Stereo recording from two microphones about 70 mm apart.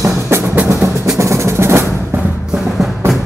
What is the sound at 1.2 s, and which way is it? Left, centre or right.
Percussion, right.